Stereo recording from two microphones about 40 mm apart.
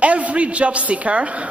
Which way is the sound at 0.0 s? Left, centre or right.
Right.